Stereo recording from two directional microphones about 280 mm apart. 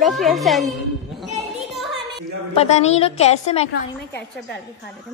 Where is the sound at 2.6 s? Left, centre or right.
Left.